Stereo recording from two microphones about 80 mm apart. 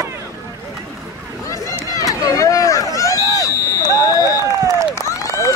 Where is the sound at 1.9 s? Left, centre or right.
Left.